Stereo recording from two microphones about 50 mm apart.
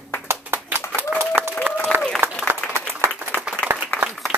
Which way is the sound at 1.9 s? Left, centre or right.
Right.